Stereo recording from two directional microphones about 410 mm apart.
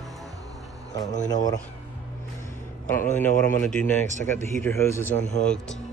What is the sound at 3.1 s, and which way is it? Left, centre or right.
Speech, centre.